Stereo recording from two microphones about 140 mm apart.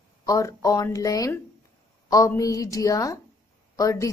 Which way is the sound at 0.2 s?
25° left (ahead or behind).